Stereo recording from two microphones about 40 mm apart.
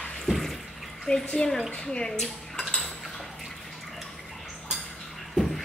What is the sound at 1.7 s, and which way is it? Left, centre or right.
Speech, left.